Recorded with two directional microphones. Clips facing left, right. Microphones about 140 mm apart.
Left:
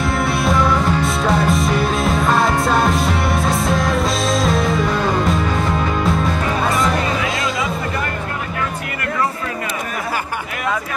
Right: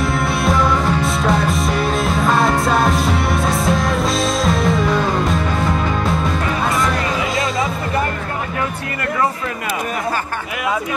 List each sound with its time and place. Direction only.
0.0 s music: centre (ahead or behind)